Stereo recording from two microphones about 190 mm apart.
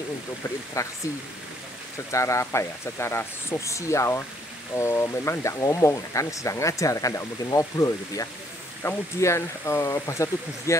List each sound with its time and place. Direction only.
0.8 s speech: 15° left (ahead or behind)
2.0 s speech: 15° left (ahead or behind)